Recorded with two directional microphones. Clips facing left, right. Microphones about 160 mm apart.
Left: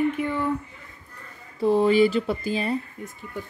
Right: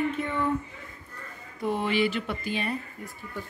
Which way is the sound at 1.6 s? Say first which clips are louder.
Left 8 dB; 35° left (ahead or behind).